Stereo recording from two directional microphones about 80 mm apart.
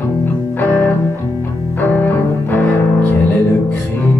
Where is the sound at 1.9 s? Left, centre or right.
Left.